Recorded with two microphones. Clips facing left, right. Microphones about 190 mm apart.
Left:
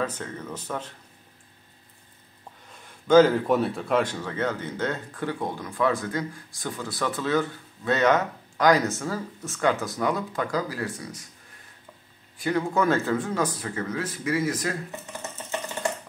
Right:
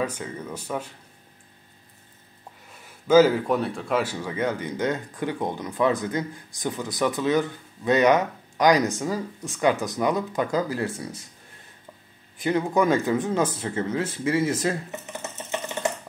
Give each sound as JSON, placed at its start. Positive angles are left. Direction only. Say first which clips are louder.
{"t": 0.0, "sound": "speech", "louder": "right 1 dB", "side_deg": -10}
{"t": 2.7, "sound": "speech", "louder": "even", "side_deg": -5}
{"t": 12.4, "sound": "speech", "louder": "right 2 dB", "side_deg": -20}